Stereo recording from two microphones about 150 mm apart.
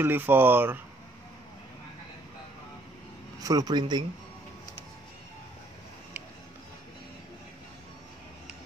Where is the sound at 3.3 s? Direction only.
25° right (ahead or behind).